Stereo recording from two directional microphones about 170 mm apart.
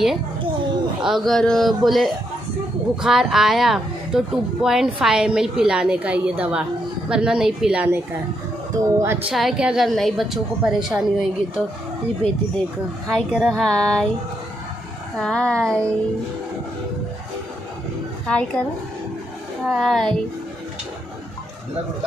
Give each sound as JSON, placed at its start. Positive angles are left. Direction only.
{"t": 1.0, "sound": "a woman's voice", "side_deg": 0}
{"t": 9.3, "sound": "a woman's voice", "side_deg": 0}
{"t": 13.1, "sound": "a woman's voice", "side_deg": 0}
{"t": 15.1, "sound": "a woman's voice", "side_deg": 5}
{"t": 18.2, "sound": "a woman's voice", "side_deg": 5}
{"t": 19.7, "sound": "a woman's voice", "side_deg": 0}